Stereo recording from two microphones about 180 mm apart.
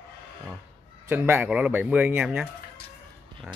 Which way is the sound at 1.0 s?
10° right (ahead or behind).